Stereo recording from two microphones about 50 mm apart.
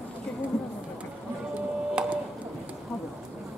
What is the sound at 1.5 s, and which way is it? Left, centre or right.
Printer, right.